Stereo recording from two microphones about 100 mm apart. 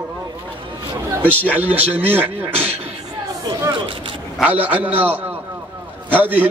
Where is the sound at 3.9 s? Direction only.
60° right (ahead or behind).